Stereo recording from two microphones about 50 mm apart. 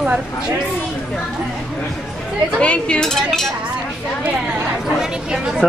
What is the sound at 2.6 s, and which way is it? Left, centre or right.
Speech, left.